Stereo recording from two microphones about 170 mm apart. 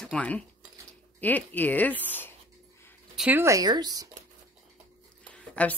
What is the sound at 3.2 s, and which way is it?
Speech, 10° right (ahead or behind).